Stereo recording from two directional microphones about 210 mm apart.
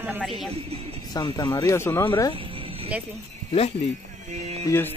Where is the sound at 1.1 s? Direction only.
15° left (ahead or behind).